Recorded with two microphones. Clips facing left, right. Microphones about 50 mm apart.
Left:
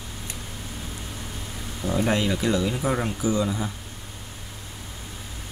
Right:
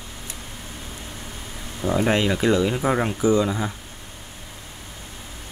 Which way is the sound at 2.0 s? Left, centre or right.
Right.